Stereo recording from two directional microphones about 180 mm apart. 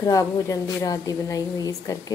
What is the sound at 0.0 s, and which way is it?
A woman's voice, 20° left (ahead or behind).